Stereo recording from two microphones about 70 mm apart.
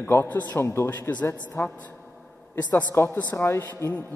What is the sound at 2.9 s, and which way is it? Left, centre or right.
Speech, left.